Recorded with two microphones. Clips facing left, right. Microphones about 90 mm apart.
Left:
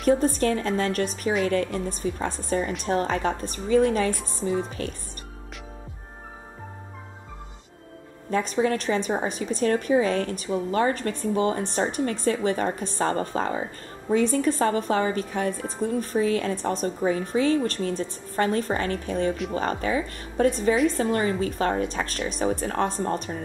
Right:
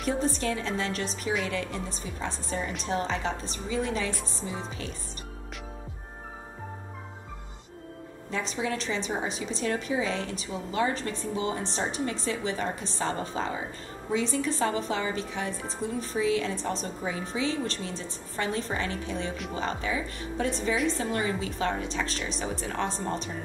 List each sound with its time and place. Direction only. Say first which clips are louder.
0.0 s a woman's voice: left 7 dB; 50° left (ahead or behind)
8.3 s a woman's voice: left 8 dB; 50° left (ahead or behind)